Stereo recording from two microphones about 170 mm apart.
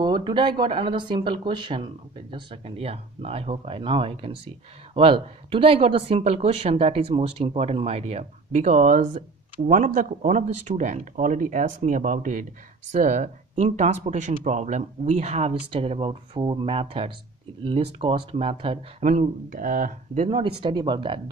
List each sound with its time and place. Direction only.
0.0 s speech: 25° right (ahead or behind)
19.0 s speech: 50° right (ahead or behind)
20.2 s speech: 30° right (ahead or behind)